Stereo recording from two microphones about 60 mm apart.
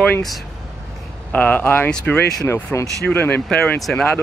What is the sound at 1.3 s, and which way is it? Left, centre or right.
Speech, left.